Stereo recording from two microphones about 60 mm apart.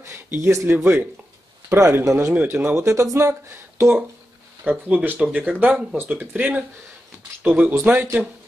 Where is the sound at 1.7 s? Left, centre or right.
Right.